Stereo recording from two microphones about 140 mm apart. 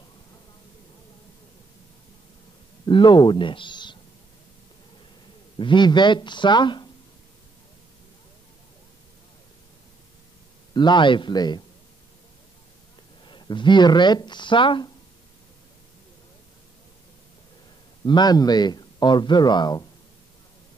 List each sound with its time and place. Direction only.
2.8 s a man's voice: 35° left (ahead or behind)
5.6 s speech: 35° left (ahead or behind)
10.7 s speech: 30° left (ahead or behind)
13.2 s speech: 35° left (ahead or behind)
18.0 s speech: 30° left (ahead or behind)